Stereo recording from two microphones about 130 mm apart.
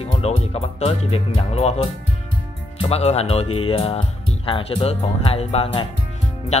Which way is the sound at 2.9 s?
55° left (ahead or behind).